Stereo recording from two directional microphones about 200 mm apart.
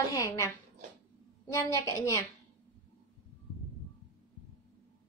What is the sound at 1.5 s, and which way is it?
Speech, 15° left (ahead or behind).